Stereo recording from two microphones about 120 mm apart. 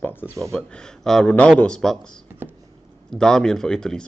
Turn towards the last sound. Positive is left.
turn(degrees=5)  # may be behind; listen again after turning